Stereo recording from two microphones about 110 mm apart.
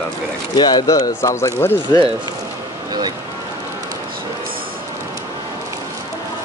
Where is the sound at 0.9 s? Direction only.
30° left (ahead or behind).